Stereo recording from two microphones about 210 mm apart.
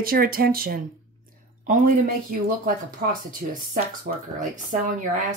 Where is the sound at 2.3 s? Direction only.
45° right (ahead or behind).